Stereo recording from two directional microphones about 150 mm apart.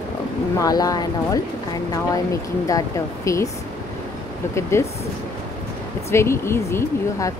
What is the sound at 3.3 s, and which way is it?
Speech, 20° left (ahead or behind).